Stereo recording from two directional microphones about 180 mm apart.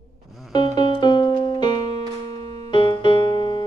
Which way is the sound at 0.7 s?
25° left (ahead or behind).